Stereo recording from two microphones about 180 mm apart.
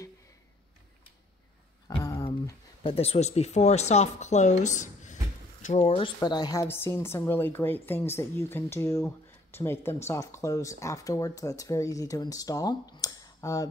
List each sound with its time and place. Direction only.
1.9 s a sound: 20° left (ahead or behind)
2.2 s speech: 30° left (ahead or behind)
6.2 s speech: 20° left (ahead or behind)